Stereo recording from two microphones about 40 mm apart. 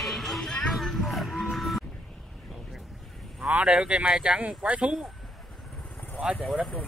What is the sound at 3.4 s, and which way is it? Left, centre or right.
Speech, right.